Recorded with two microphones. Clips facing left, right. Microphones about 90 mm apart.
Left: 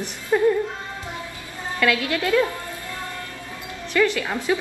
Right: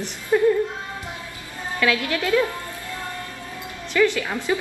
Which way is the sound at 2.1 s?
15° left (ahead or behind).